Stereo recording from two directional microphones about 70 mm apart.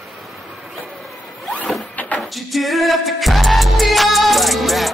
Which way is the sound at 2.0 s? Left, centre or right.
Left.